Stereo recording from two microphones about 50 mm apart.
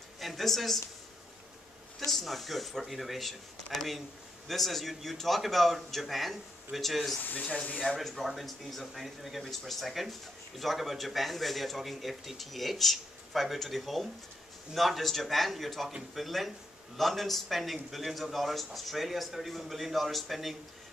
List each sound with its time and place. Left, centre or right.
0.2 s speech: centre
2.0 s speech: centre
7.2 s speech: left
7.9 s speech: centre